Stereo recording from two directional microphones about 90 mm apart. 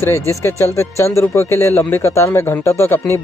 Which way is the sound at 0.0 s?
30° left (ahead or behind).